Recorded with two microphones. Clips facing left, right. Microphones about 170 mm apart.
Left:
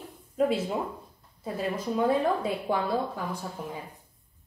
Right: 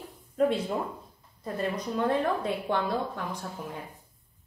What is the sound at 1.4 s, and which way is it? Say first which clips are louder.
A woman's voice: even; 5° left (ahead or behind).